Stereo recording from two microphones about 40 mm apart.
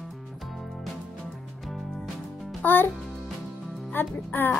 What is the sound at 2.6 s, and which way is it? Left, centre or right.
Speech, left.